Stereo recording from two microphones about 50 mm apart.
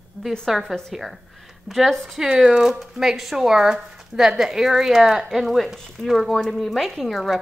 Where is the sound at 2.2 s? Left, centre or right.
Centre.